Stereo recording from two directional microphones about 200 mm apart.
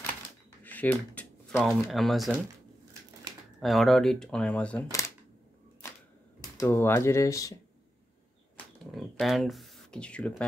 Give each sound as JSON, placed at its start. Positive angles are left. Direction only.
{"t": 0.7, "sound": "a sound", "side_deg": 10}
{"t": 1.9, "sound": "speech", "side_deg": 0}
{"t": 3.6, "sound": "speech", "side_deg": 0}
{"t": 6.5, "sound": "speech", "side_deg": 15}
{"t": 8.9, "sound": "speech", "side_deg": 0}